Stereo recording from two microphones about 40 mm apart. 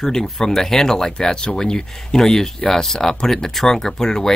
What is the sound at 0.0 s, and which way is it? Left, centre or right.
Speech, centre.